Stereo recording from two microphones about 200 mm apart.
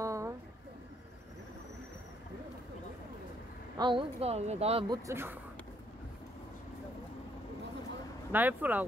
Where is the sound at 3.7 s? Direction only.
25° right (ahead or behind).